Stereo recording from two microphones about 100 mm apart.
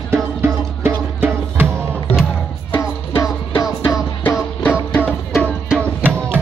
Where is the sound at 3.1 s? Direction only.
30° left (ahead or behind).